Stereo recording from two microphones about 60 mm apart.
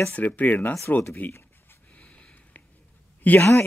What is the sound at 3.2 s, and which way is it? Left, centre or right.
Speech, left.